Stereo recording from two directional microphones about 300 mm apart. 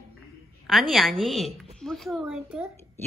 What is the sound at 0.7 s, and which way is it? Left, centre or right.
A woman's voice, centre.